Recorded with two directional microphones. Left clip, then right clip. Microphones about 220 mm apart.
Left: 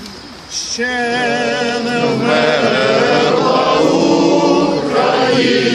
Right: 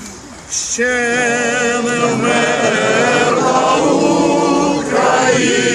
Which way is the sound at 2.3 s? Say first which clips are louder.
Left 2 dB; 40° left (ahead or behind).